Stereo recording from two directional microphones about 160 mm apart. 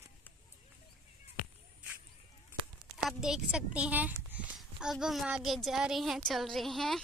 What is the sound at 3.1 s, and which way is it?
Speech, 5° right (ahead or behind).